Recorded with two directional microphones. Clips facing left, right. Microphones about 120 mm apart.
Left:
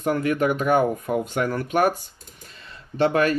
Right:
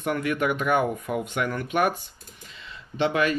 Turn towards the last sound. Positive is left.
turn(degrees=40)  # may be behind; listen again after turning